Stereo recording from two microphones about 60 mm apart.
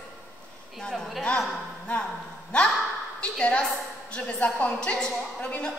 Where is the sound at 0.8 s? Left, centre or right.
Centre.